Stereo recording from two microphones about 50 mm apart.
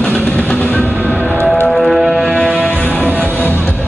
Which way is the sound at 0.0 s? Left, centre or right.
Left.